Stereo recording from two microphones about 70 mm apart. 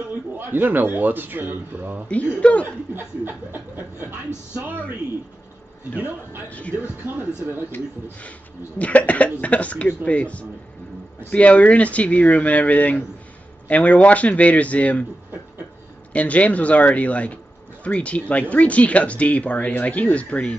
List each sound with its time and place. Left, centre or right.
0.5 s a man's voice: right
2.0 s speech: centre
2.6 s a man's voice: right
5.9 s a man's voice: right
8.7 s speech: left
16.1 s speech: centre